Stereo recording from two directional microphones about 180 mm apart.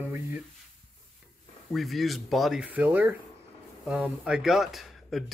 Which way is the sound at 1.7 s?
Centre (ahead or behind).